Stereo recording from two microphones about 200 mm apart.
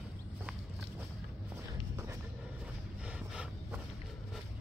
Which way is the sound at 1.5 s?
15° right (ahead or behind).